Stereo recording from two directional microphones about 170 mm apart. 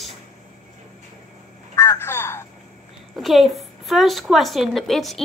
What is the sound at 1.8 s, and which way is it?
Telephone, 15° left (ahead or behind).